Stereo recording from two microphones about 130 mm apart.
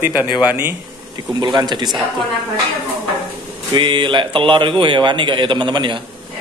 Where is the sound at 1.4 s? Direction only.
35° right (ahead or behind).